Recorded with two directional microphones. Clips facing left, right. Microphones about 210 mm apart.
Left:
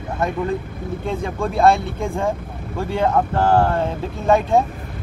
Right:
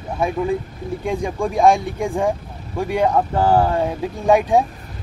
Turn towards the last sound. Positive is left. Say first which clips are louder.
# right 1 dB
turn(degrees=-15)  # may be behind; listen again after turning